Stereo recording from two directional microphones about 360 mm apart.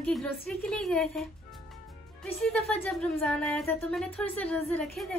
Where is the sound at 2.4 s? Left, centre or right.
Centre.